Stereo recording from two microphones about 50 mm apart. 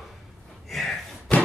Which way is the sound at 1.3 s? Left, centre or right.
Left.